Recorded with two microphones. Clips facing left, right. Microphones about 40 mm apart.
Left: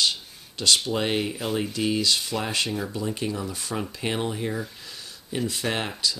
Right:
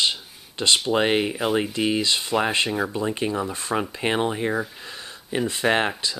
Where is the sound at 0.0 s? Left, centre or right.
Right.